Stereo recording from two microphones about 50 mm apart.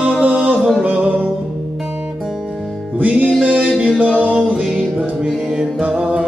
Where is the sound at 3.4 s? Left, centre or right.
Right.